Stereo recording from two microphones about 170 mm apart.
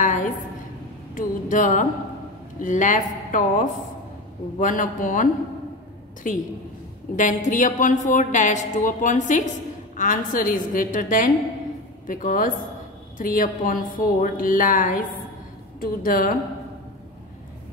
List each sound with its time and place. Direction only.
0.0 s a sound: 50° left (ahead or behind)
1.1 s a woman's voice: 50° left (ahead or behind)
7.2 s a woman's voice: 50° left (ahead or behind)